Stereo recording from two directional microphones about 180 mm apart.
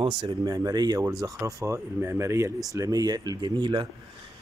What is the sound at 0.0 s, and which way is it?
Speech, 25° right (ahead or behind).